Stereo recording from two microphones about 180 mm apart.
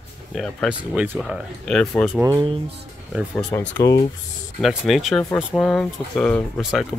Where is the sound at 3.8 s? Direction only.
20° left (ahead or behind).